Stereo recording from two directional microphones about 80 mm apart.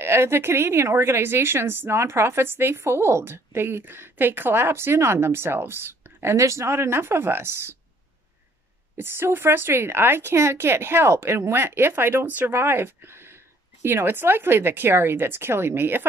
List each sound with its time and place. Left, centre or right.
0.0 s a woman's voice: right
8.9 s speech: right